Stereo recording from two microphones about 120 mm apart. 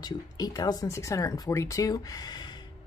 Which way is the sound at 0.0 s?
35° left (ahead or behind).